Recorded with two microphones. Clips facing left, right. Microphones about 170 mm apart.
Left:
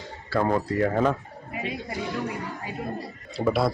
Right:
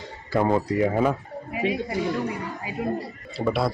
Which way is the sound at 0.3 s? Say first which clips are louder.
Right 2 dB; 20° right (ahead or behind).